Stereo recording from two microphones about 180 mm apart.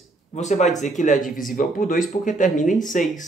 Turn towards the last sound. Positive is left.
turn(degrees=45)  # may be behind; listen again after turning